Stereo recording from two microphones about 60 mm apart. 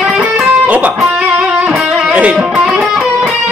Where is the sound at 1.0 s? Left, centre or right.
Centre.